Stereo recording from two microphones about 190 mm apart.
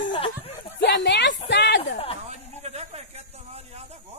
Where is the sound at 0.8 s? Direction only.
70° left (ahead or behind).